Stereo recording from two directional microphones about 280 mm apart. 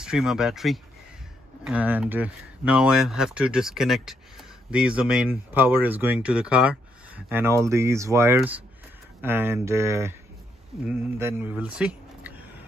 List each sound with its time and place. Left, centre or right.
0.0 s speech: centre
11.1 s speech: centre